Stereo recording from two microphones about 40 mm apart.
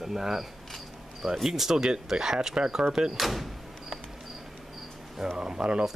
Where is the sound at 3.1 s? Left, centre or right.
Centre.